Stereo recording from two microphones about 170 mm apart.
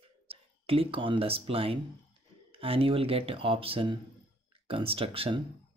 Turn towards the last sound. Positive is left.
turn(degrees=-35)  # may be behind; listen again after turning